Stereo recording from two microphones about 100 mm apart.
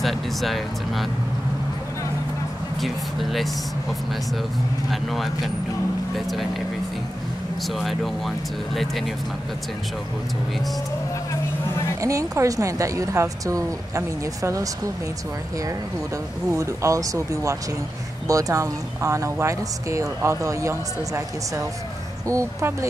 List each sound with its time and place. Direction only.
0.0 s speech: centre (ahead or behind)
2.8 s speech: centre (ahead or behind)
5.1 s speech: centre (ahead or behind)
7.6 s speech: centre (ahead or behind)
12.0 s speech: 30° right (ahead or behind)
16.4 s speech: 30° right (ahead or behind)
22.3 s speech: 30° right (ahead or behind)